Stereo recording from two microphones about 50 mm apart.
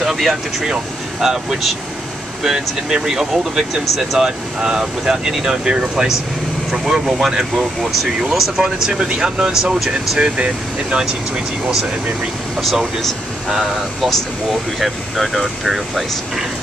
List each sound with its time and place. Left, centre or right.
0.0 s speech: centre
12.5 s speech: centre